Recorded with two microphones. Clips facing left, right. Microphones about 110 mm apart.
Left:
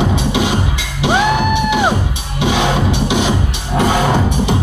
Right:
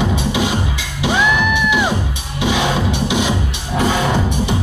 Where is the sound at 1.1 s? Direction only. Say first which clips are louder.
Left 3 dB; 45° left (ahead or behind).